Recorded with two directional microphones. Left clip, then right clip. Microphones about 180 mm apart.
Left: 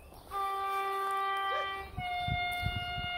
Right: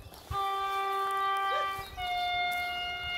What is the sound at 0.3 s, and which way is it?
Dog, 20° right (ahead or behind).